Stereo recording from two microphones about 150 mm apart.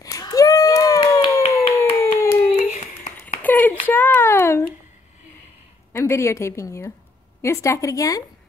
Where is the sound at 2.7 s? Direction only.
55° left (ahead or behind).